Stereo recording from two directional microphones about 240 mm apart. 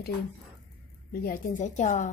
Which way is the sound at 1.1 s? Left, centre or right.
Left.